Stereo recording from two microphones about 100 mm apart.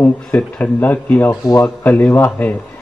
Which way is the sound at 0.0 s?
20° left (ahead or behind).